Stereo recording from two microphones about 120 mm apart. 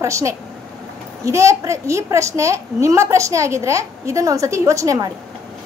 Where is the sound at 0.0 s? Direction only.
25° right (ahead or behind).